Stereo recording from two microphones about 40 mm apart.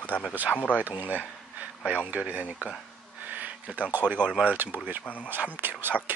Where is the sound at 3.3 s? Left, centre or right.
Right.